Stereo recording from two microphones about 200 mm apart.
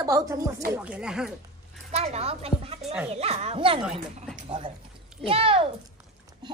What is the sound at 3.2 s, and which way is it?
Speech, 30° right (ahead or behind).